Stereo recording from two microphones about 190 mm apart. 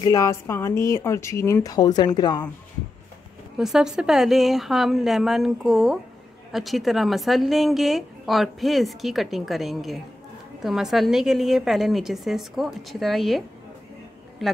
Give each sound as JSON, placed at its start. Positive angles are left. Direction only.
{"t": 0.0, "sound": "a woman's voice", "side_deg": 15}
{"t": 3.5, "sound": "a woman's voice", "side_deg": 0}